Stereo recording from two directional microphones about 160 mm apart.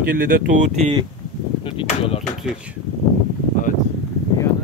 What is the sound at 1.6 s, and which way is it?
Speech, 35° left (ahead or behind).